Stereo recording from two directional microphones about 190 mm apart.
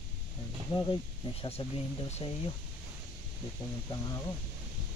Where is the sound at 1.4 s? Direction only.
30° left (ahead or behind).